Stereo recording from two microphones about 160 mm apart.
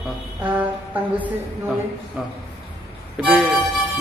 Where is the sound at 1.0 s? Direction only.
10° right (ahead or behind).